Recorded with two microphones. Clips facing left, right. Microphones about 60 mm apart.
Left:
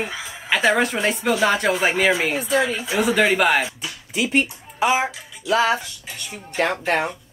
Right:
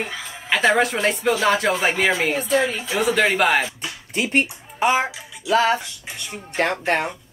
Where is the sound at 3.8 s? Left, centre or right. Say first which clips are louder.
Even; right.